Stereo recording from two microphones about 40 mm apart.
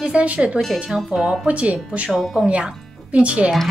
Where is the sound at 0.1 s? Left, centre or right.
Right.